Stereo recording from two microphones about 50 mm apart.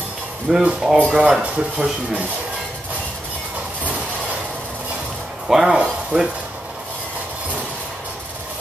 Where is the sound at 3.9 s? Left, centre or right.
Right.